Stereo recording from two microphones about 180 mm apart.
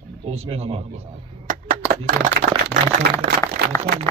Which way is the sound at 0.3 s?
35° right (ahead or behind).